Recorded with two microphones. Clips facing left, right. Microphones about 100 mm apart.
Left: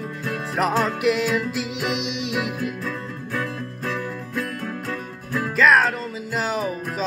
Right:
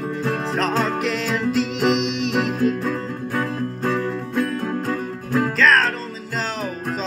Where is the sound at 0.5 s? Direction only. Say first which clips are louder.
Left 2 dB; 15° left (ahead or behind).